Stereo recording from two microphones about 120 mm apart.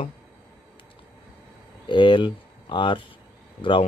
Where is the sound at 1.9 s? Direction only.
40° left (ahead or behind).